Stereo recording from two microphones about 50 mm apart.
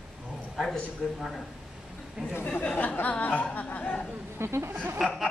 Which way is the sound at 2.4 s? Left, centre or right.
Left.